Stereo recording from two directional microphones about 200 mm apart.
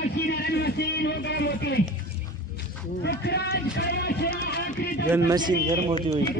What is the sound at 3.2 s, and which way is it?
Speech, 55° left (ahead or behind).